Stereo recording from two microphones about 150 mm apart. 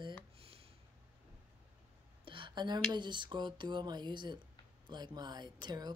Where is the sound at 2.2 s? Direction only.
35° right (ahead or behind).